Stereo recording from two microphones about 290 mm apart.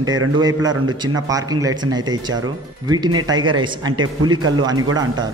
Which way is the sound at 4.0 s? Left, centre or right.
Right.